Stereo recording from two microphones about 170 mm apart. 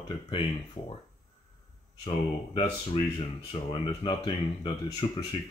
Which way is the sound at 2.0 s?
30° left (ahead or behind).